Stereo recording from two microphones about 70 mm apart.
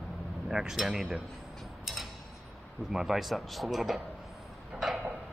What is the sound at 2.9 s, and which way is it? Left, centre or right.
Speech, centre.